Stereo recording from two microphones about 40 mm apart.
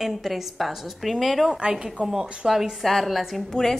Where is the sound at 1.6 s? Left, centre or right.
Centre.